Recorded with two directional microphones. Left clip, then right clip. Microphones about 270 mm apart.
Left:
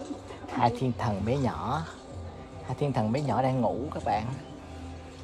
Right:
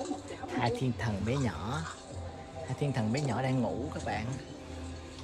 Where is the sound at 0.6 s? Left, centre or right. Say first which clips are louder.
Left 6 dB; centre.